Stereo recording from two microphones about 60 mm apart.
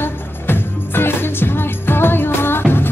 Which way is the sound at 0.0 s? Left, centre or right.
Left.